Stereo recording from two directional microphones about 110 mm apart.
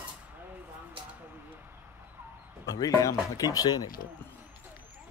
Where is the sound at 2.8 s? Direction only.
30° left (ahead or behind).